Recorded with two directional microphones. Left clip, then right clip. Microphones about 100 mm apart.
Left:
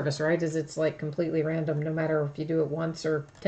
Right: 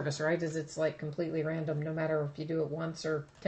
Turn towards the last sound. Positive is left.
turn(degrees=35)  # may be behind; listen again after turning